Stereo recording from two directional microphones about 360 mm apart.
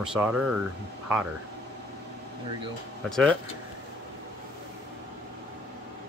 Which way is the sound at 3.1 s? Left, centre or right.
Centre.